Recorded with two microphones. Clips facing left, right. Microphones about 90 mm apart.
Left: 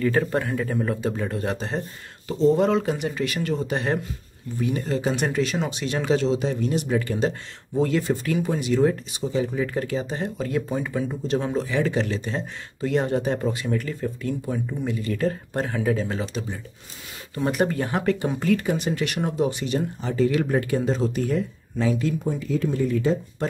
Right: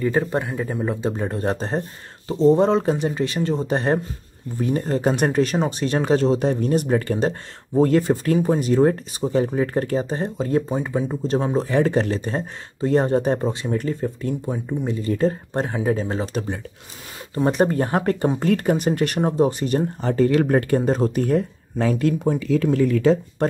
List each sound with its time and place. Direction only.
0.3 s speech: 15° right (ahead or behind); by 10.3 s 35° right (ahead or behind)
10.3 s speech: 25° right (ahead or behind)
17.3 s speech: 30° right (ahead or behind); by 23.1 s 90° right